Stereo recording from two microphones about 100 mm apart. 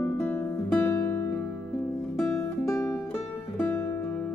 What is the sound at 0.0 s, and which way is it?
Music, 20° left (ahead or behind).